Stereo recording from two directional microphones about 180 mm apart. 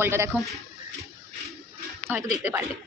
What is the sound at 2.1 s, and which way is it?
Speech, 10° right (ahead or behind).